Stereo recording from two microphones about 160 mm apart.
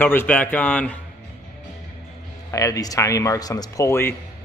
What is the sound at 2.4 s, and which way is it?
Speech, 20° left (ahead or behind).